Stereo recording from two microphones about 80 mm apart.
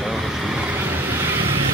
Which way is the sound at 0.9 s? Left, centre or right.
Right.